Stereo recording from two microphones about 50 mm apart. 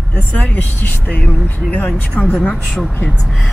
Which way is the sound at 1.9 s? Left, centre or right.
Left.